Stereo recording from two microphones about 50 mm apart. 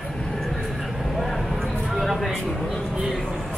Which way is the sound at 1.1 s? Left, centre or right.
Centre.